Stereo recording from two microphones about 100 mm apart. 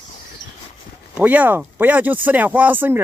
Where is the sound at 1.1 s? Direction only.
15° right (ahead or behind).